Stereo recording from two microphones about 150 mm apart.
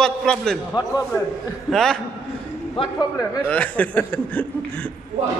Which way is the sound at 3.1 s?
25° left (ahead or behind).